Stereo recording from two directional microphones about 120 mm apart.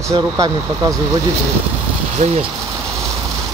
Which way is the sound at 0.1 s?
30° right (ahead or behind).